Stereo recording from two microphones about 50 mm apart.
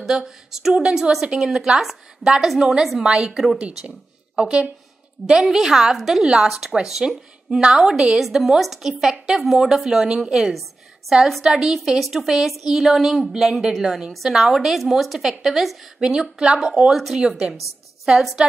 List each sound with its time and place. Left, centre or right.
0.0 s a woman's voice: centre
5.2 s a woman's voice: centre
16.0 s a woman's voice: centre
18.1 s speech: centre